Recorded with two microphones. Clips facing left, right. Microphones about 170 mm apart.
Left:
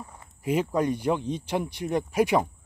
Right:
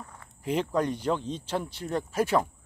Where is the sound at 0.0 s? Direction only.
10° left (ahead or behind).